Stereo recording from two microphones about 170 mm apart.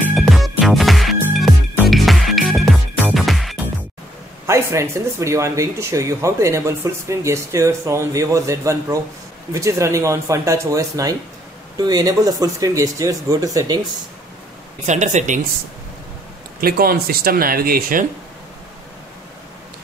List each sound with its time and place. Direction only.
0.1 s music: centre (ahead or behind)
4.5 s speech: 15° right (ahead or behind)
14.9 s speech: 45° right (ahead or behind)
16.6 s speech: 60° right (ahead or behind)